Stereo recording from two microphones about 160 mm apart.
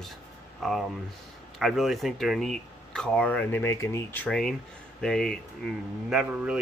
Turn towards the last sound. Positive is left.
turn(degrees=-5)  # may be behind; listen again after turning